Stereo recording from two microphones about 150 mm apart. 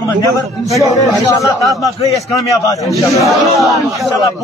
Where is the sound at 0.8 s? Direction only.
25° left (ahead or behind).